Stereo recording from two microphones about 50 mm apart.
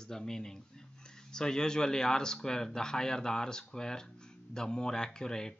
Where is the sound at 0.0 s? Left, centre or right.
Centre.